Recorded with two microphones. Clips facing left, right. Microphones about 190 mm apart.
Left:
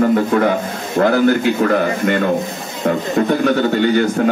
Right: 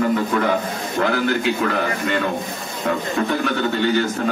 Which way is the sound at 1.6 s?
50° left (ahead or behind).